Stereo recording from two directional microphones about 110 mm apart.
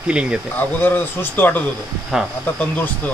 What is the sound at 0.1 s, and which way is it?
Speech, 10° right (ahead or behind).